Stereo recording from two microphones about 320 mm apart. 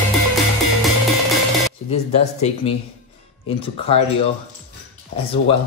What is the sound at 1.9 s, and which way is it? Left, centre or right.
Speech, centre.